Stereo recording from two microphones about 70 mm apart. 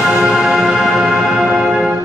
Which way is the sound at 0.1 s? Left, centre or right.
Centre.